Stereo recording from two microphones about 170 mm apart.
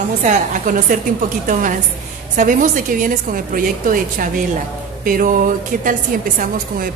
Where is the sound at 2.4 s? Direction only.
50° right (ahead or behind).